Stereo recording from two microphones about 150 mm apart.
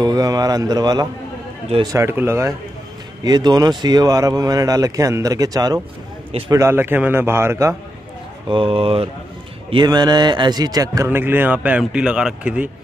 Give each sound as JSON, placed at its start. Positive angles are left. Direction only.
{"t": 0.0, "sound": "speech", "side_deg": -25}
{"t": 3.3, "sound": "a man's voice", "side_deg": -25}
{"t": 8.5, "sound": "speech", "side_deg": -35}
{"t": 11.1, "sound": "a man's voice", "side_deg": -15}